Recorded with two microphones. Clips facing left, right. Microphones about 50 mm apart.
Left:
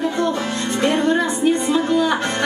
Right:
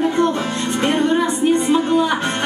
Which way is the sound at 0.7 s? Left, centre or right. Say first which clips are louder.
Even; right.